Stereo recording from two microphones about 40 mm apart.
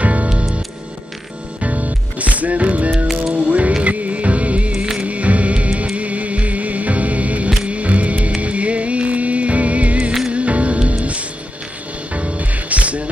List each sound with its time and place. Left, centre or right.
0.0 s music: right
1.6 s music: right
3.1 s music: centre
3.4 s music: right
4.7 s music: centre
5.0 s music: right